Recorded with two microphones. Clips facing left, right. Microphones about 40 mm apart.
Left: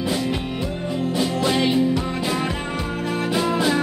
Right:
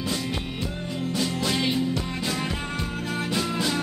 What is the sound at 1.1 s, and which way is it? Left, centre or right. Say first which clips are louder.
Music: left 5 dB; centre.